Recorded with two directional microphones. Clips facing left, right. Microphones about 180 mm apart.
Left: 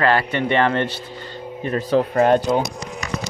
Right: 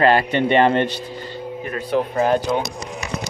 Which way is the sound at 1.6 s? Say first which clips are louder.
Left 3 dB; 35° left (ahead or behind).